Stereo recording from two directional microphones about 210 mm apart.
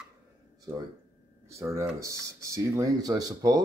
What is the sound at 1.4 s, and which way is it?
Speech, 15° right (ahead or behind).